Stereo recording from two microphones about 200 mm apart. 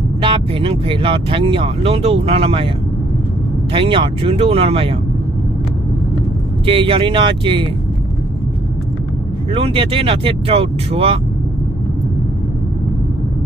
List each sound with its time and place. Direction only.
0.2 s speech: 25° right (ahead or behind)
3.7 s speech: 25° right (ahead or behind)
6.6 s speech: 25° right (ahead or behind)
9.5 s speech: 25° right (ahead or behind)